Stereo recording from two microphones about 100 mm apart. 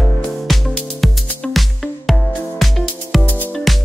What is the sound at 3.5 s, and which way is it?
Music, centre (ahead or behind).